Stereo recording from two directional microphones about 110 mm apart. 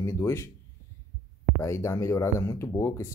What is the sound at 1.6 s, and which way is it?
Speech, 25° left (ahead or behind).